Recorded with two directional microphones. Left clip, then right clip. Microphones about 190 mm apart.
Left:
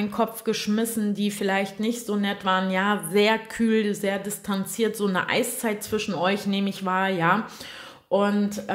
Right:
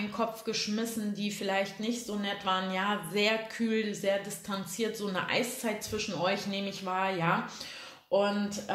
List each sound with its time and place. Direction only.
0.1 s speech: 55° left (ahead or behind)